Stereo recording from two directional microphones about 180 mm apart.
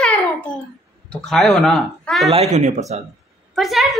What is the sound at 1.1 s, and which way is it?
Speech, centre (ahead or behind).